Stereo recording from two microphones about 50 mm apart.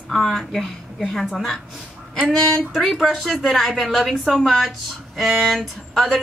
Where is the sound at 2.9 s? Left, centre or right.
Centre.